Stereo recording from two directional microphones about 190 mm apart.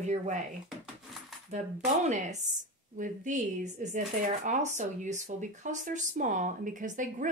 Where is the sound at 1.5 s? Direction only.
40° right (ahead or behind).